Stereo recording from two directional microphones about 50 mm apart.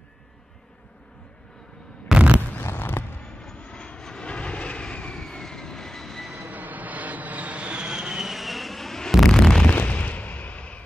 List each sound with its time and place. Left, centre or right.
2.1 s a sound: right
2.6 s fireworks: left
3.2 s vehicle: centre
6.5 s vehicle: right; by 9.1 s centre
9.3 s explosion: centre
9.7 s fireworks: left